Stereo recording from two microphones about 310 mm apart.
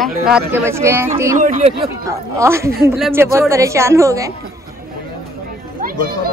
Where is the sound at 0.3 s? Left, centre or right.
Centre.